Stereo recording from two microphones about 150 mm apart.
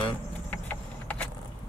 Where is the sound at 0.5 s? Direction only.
10° left (ahead or behind).